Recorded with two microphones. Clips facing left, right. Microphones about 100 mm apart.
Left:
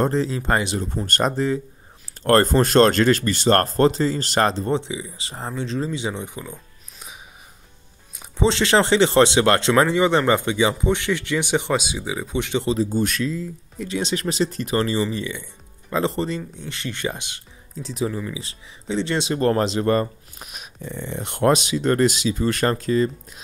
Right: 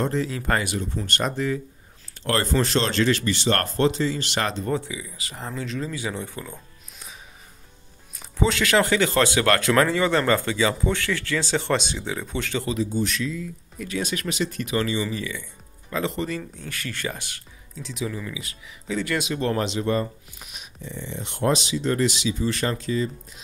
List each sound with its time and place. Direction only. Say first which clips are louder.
0.0 s speech: left 4 dB; 35° left (ahead or behind)
0.7 s speech: left 3 dB; 40° left (ahead or behind)
2.2 s speech: left 7 dB; 45° left (ahead or behind); by 6.5 s 15° left (ahead or behind)
8.2 s speech: left 3 dB; 25° left (ahead or behind)
13.0 s speech: left 3 dB; 50° left (ahead or behind)
13.3 s speech: left 3 dB; 30° left (ahead or behind)
15.0 s speech: left 3 dB; 25° left (ahead or behind)
16.3 s speech: left 2 dB; 20° left (ahead or behind)
17.8 s speech: left 5 dB; 35° left (ahead or behind)
19.3 s speech: left 7 dB; 40° left (ahead or behind)
19.8 s speech: left 4 dB; 55° left (ahead or behind)